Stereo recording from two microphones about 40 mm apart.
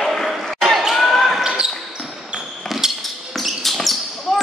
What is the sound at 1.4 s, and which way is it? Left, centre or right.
Basketball bounce, centre.